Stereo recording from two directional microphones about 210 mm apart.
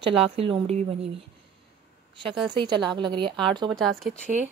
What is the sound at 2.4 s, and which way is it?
Speech, 20° right (ahead or behind).